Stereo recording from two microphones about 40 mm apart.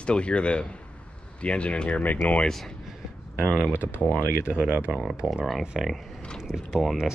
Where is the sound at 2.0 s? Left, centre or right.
Left.